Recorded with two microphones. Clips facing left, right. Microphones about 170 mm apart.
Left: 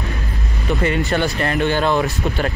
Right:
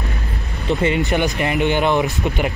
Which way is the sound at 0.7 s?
20° right (ahead or behind).